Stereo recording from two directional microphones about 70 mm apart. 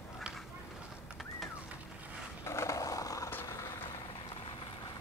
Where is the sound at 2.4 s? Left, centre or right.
Left.